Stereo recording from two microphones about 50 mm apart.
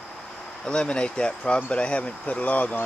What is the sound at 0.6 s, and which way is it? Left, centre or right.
Speech, centre.